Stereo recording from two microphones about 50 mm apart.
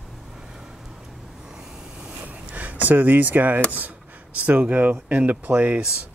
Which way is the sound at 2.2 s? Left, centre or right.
Right.